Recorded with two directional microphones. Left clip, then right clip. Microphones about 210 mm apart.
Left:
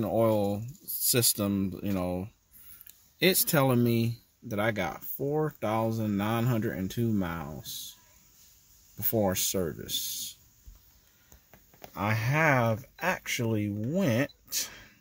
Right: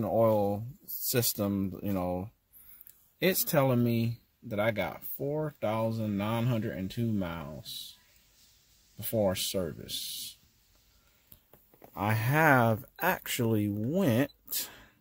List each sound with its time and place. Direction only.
0.0 s speech: centre (ahead or behind)
9.0 s speech: centre (ahead or behind)
11.9 s speech: 10° right (ahead or behind)